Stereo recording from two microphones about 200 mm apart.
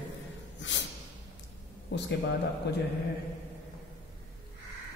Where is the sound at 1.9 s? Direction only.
60° left (ahead or behind).